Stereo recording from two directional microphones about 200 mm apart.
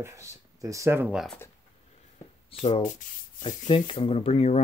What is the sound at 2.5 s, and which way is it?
Speech, 30° left (ahead or behind).